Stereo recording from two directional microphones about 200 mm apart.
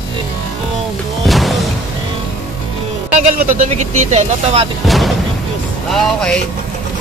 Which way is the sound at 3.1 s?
35° right (ahead or behind).